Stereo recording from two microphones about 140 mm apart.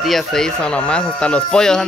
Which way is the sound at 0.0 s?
Centre (ahead or behind).